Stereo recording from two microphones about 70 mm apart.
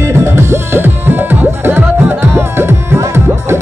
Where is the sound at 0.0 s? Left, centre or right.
Right.